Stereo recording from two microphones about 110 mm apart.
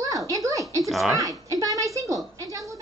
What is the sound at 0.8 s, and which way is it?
Speech, centre (ahead or behind).